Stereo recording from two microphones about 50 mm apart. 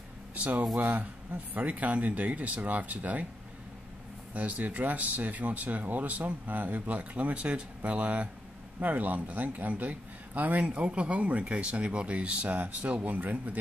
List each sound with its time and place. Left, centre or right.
0.3 s speech: right
4.3 s speech: right
10.7 s speech: right